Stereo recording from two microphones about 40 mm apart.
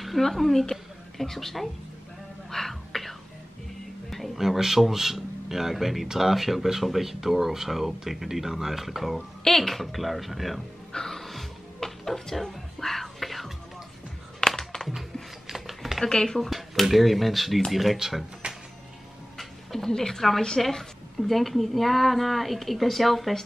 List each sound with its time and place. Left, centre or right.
0.0 s speech: centre
2.5 s whispering: centre
4.4 s speech: centre
10.9 s music: centre
15.4 s a sound: centre
16.1 s speech: centre
16.4 s speech: centre
18.4 s music: right
19.3 s a sound: centre
20.6 s speech: centre